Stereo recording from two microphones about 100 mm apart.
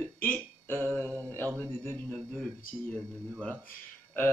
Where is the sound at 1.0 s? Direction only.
20° right (ahead or behind).